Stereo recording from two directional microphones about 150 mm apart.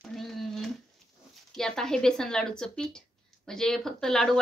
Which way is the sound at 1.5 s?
5° left (ahead or behind).